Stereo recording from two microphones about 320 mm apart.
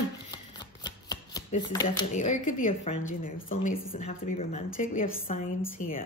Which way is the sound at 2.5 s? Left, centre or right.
Left.